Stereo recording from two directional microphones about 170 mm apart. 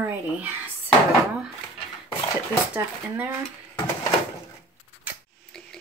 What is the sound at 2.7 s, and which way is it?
Speech, 10° right (ahead or behind).